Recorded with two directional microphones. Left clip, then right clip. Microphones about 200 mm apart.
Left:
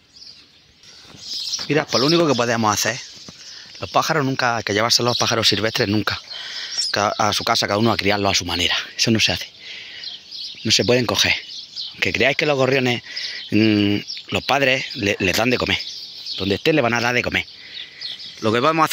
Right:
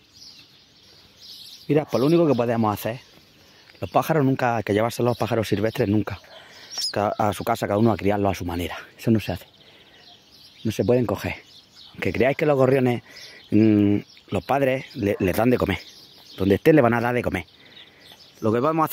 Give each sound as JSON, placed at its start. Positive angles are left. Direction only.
{"t": 1.7, "sound": "speech", "side_deg": -10}
{"t": 4.7, "sound": "speech", "side_deg": -10}
{"t": 10.6, "sound": "speech", "side_deg": 0}
{"t": 16.3, "sound": "speech", "side_deg": -25}
{"t": 16.9, "sound": "speech", "side_deg": -10}